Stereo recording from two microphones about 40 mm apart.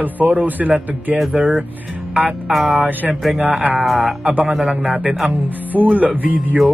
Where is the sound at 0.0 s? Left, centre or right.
Right.